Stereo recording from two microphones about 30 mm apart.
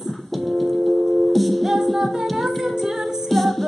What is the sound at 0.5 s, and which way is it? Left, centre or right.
Music, centre.